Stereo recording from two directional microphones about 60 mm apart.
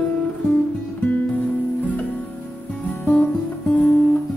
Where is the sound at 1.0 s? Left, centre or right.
Left.